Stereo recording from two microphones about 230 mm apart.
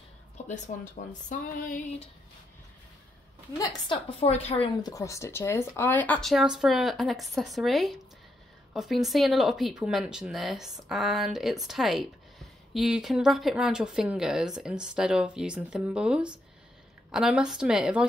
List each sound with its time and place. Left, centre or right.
0.5 s speech: left
4.2 s speech: left; by 18.0 s centre